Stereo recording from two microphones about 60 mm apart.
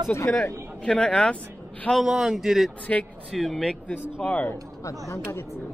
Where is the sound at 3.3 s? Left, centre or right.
Centre.